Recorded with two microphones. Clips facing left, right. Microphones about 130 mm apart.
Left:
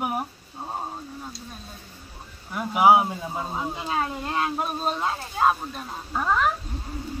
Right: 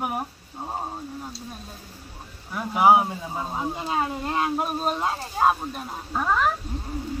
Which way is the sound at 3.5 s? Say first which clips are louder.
Right 2 dB; 10° right (ahead or behind).